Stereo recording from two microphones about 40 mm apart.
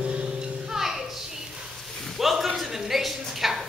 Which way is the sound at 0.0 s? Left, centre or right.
Right.